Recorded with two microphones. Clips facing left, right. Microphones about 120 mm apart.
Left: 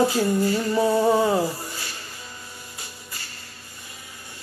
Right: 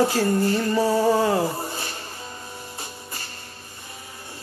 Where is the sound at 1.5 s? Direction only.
25° right (ahead or behind).